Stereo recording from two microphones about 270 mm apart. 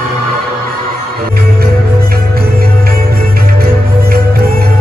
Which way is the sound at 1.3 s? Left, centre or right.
Right.